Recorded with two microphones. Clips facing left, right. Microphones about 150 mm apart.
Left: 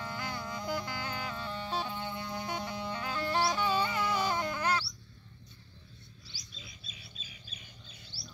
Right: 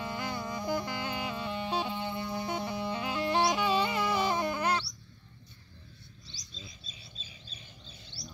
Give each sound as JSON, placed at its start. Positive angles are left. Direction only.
{"t": 0.0, "sound": "music", "side_deg": -10}
{"t": 6.5, "sound": "bird", "side_deg": -30}
{"t": 8.1, "sound": "a sound", "side_deg": 5}